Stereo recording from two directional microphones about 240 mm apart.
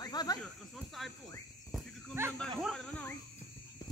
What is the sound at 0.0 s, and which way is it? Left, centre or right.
Snake, centre.